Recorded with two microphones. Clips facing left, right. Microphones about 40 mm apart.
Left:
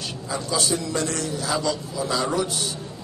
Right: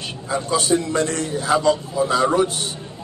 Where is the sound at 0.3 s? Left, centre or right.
Right.